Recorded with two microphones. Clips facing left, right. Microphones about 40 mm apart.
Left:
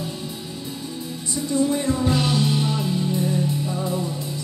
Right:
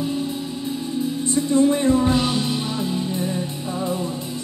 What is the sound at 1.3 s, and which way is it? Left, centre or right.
Music, right.